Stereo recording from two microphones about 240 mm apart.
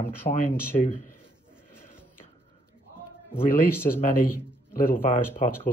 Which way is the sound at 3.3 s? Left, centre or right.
Centre.